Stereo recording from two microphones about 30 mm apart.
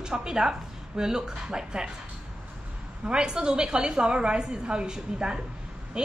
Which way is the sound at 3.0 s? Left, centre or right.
Right.